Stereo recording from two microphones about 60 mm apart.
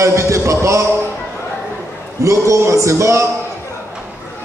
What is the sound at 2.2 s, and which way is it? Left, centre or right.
A man's voice, right.